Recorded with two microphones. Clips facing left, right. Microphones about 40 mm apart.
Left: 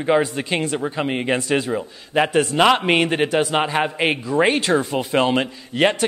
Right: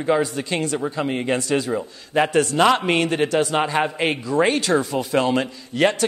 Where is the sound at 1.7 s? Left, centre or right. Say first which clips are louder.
Left 1 dB; centre.